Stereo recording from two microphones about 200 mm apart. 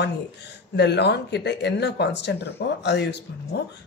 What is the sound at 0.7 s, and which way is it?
Speech, 60° left (ahead or behind).